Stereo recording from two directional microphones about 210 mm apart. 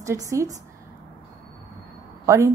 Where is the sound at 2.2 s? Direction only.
15° right (ahead or behind).